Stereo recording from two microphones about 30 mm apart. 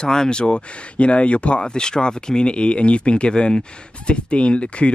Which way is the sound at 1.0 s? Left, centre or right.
Left.